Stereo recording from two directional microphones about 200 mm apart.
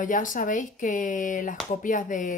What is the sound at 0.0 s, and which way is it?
Speech, 40° left (ahead or behind).